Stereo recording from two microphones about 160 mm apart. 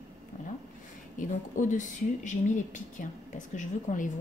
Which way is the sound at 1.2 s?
50° left (ahead or behind).